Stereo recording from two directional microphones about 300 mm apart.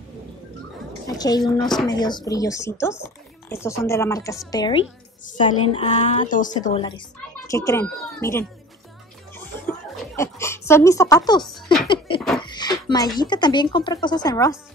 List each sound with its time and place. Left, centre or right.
1.0 s a woman's voice: centre
9.3 s chuckle: centre
10.7 s a woman's voice: centre
11.4 s a sound: centre
12.4 s a sound: centre
13.2 s a woman's voice: centre